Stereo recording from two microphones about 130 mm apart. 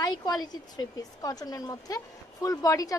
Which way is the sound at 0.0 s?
35° left (ahead or behind).